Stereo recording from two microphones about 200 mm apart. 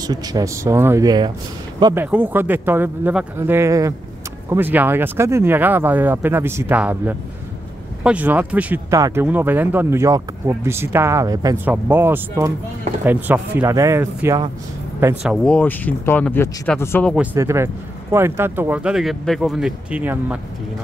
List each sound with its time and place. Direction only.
0.0 s speech: 20° right (ahead or behind)
2.0 s speech: 10° right (ahead or behind)
15.4 s speech: 5° left (ahead or behind)
17.1 s speech: 10° right (ahead or behind)